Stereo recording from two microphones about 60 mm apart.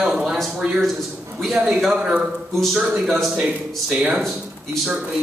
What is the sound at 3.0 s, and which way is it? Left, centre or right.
Speech, centre.